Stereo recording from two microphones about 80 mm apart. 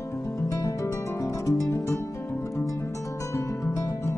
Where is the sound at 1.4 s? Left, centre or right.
Left.